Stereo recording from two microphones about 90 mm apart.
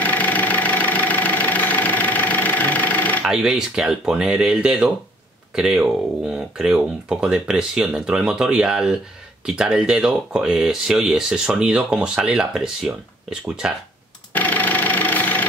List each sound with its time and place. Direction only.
0.0 s engine: 20° left (ahead or behind)
3.3 s speech: 5° right (ahead or behind)
14.3 s a sound: 20° left (ahead or behind)